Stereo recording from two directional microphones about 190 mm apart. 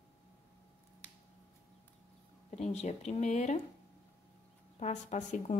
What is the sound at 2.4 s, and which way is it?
Speech, 35° left (ahead or behind).